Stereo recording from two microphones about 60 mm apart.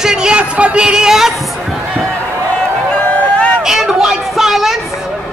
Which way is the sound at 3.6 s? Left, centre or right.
Centre.